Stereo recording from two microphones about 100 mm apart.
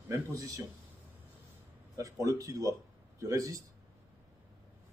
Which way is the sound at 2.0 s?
35° right (ahead or behind).